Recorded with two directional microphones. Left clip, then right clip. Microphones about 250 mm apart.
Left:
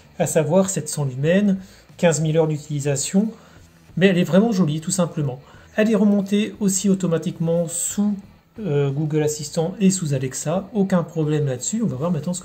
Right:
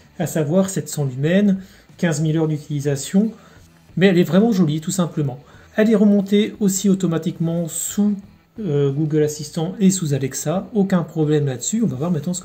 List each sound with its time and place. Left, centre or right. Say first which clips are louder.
0.2 s speech: left 2 dB; centre